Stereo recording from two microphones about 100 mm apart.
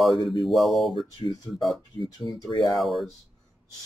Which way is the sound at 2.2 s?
35° left (ahead or behind).